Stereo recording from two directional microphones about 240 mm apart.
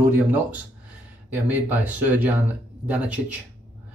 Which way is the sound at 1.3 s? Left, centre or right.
Centre.